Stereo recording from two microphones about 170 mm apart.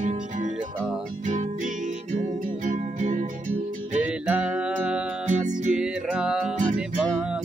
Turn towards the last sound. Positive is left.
turn(degrees=-5)  # may be behind; listen again after turning